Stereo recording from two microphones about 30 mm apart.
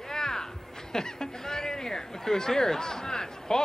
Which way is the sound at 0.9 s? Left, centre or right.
Centre.